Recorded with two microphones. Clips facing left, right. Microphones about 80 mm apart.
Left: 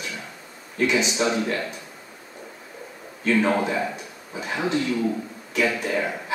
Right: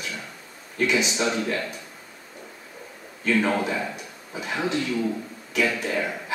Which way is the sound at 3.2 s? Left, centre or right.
Centre.